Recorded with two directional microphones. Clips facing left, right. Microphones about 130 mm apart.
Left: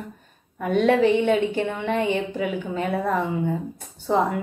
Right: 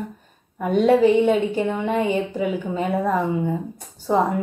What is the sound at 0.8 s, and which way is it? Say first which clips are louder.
A woman's voice: right 3 dB; 10° right (ahead or behind).